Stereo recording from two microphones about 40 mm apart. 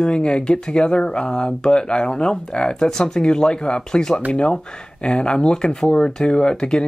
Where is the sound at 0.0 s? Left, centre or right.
Left.